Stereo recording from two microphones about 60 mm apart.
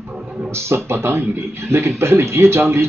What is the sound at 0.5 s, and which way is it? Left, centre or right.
Speech, right.